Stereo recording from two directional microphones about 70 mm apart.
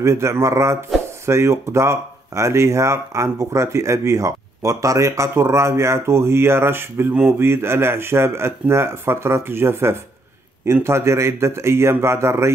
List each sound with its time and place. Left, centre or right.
0.0 s speech: right